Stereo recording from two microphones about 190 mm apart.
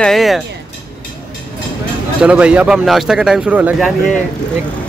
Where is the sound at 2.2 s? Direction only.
5° right (ahead or behind).